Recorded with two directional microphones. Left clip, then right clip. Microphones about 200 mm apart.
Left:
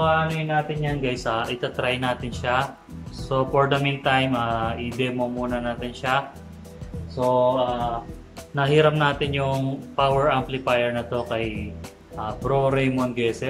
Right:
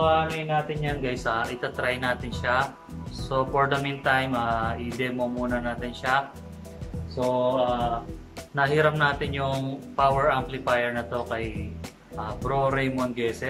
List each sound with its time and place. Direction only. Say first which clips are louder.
0.0 s speech: left 1 dB; centre (ahead or behind)